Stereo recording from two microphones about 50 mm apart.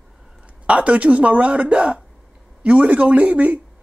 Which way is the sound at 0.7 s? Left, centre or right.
Right.